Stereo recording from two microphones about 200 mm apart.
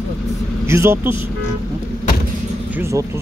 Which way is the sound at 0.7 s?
15° right (ahead or behind).